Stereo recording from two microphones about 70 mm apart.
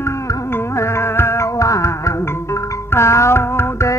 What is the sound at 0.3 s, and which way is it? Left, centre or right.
Music, left.